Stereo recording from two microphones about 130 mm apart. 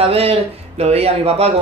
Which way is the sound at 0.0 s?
50° right (ahead or behind).